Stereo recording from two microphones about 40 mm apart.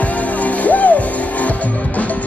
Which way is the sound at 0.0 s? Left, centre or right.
Left.